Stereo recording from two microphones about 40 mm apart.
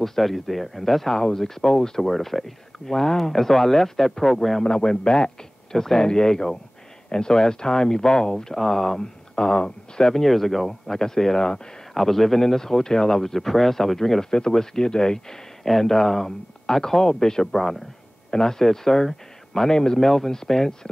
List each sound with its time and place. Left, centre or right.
0.0 s speech: centre
4.6 s a man's voice: centre
10.1 s speech: centre
12.0 s speech: centre